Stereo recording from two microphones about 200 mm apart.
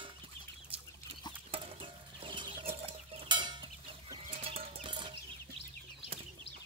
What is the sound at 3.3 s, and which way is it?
Chicken, 25° right (ahead or behind).